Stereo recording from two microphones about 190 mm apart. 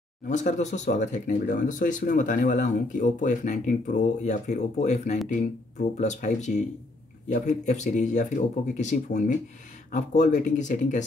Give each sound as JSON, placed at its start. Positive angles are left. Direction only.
{"t": 0.3, "sound": "speech", "side_deg": 40}